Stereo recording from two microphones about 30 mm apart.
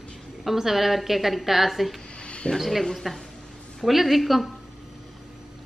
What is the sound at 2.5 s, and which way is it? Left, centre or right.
Speech, centre.